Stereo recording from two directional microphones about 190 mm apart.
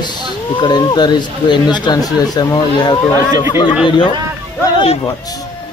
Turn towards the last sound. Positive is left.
turn(degrees=30)  # may be behind; listen again after turning